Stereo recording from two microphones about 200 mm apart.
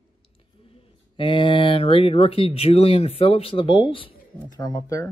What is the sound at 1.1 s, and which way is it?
Speech, 25° left (ahead or behind).